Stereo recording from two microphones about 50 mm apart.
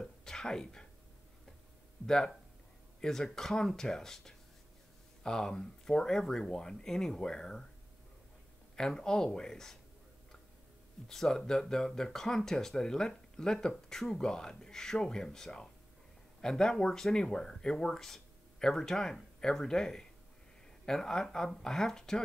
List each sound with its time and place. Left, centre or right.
0.0 s whispering: centre
2.0 s speech: centre
8.7 s speech: centre
11.1 s speech: centre